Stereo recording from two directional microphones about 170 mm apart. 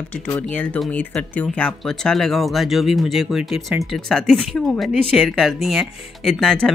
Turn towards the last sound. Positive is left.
turn(degrees=5)  # may be behind; listen again after turning